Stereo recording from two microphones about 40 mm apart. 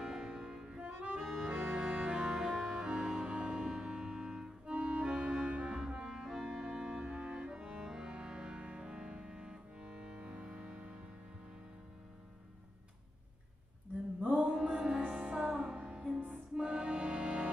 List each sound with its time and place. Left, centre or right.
0.0 s music: right
0.7 s accordion: right
1.2 s accordion: centre
1.5 s music: right
2.1 s music: centre
4.7 s music: right
5.0 s clarinet: right
6.4 s music: right
14.3 s music: centre